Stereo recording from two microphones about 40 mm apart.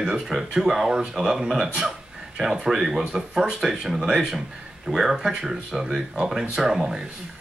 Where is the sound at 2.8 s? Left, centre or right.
Centre.